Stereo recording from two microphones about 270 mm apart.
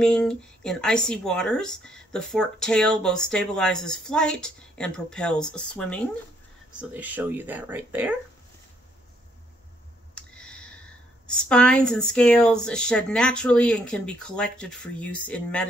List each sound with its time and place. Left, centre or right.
0.0 s speech: centre
10.1 s a sound: centre
11.4 s speech: centre